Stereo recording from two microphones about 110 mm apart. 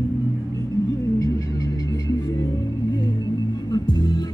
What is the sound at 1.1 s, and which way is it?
Music, 30° left (ahead or behind).